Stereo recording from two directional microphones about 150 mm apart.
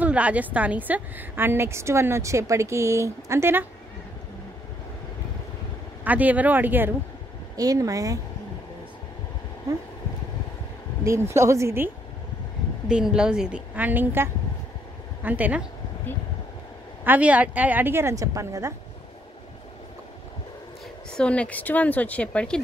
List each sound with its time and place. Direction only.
0.0 s a woman's voice: 10° right (ahead or behind)
6.0 s a woman's voice: 10° right (ahead or behind)
7.5 s speech: 25° right (ahead or behind)
11.1 s speech: 20° right (ahead or behind)
12.8 s a woman's voice: 5° right (ahead or behind)
17.0 s a woman's voice: 10° right (ahead or behind)
21.1 s speech: 5° left (ahead or behind)